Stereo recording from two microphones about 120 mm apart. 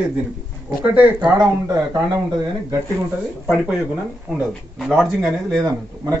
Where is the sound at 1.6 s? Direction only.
30° right (ahead or behind).